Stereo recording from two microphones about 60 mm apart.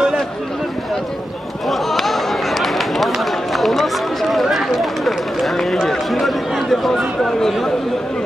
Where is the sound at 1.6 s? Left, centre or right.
Centre.